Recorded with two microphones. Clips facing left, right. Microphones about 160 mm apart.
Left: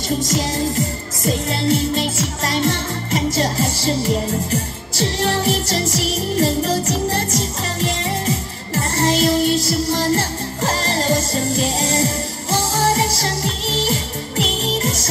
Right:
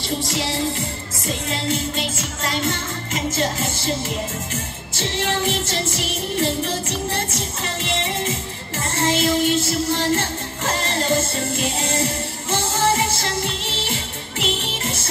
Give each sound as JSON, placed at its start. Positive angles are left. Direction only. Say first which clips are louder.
{"t": 0.2, "sound": "music", "louder": "left 3 dB", "side_deg": 45}